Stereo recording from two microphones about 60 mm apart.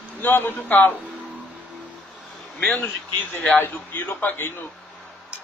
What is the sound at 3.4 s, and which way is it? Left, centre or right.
A man's voice, left.